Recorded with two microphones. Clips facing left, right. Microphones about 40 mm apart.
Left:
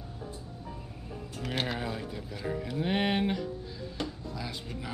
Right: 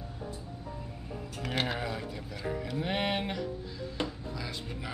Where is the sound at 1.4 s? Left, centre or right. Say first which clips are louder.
Even; centre.